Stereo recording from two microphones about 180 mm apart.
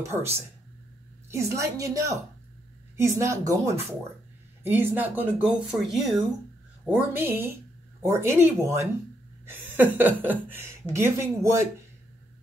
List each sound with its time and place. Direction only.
0.0 s speech: 15° right (ahead or behind)
1.3 s speech: 15° right (ahead or behind)
3.2 s speech: 20° right (ahead or behind)
9.5 s a sound: 10° right (ahead or behind)
10.2 s speech: 10° right (ahead or behind)